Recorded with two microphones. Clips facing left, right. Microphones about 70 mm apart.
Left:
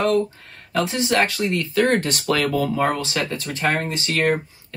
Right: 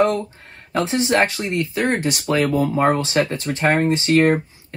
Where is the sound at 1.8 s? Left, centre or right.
Centre.